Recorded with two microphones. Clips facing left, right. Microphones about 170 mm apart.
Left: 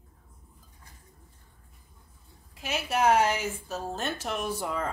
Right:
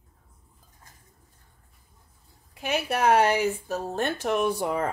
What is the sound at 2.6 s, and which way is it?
Speech, 60° right (ahead or behind).